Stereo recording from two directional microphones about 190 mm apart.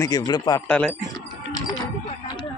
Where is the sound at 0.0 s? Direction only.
20° left (ahead or behind).